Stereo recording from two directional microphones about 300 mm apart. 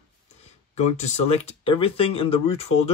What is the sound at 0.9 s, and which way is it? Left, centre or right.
Speech, left.